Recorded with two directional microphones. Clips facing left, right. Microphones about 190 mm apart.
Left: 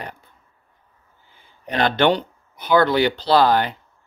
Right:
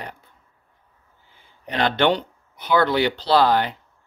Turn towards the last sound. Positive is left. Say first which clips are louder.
# left 1 dB
turn(degrees=45)  # may be behind; listen again after turning